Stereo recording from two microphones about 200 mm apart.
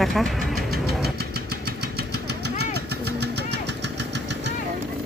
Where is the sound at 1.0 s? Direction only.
50° right (ahead or behind).